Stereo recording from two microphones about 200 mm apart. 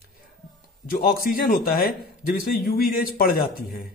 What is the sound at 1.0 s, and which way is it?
A man's voice, 45° left (ahead or behind).